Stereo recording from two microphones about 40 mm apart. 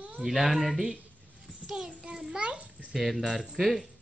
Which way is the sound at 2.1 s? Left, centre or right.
Centre.